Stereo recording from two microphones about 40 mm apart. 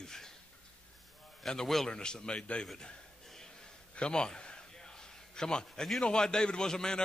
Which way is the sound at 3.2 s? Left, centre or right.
Centre.